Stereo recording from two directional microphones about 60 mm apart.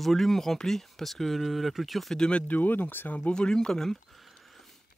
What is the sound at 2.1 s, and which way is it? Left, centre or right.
Speech, centre.